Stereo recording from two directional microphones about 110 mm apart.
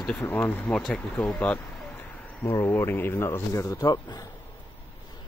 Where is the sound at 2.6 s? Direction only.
20° left (ahead or behind).